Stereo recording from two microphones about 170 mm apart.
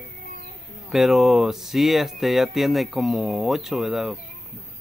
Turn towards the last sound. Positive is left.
turn(degrees=0)  # may be behind; listen again after turning